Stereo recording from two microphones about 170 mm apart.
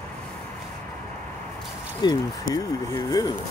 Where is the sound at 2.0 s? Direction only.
25° left (ahead or behind).